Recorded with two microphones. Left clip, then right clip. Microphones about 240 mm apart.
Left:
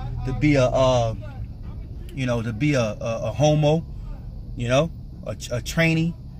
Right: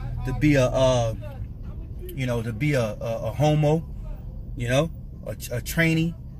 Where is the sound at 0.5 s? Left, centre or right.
Centre.